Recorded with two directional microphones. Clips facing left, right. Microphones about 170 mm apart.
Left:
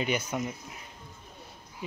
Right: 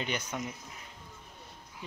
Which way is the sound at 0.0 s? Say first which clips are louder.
Left 5 dB; 10° left (ahead or behind).